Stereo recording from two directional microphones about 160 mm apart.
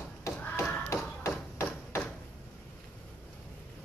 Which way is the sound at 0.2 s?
15° left (ahead or behind).